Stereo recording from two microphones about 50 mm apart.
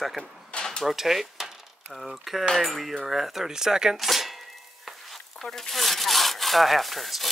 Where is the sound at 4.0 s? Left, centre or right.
Centre.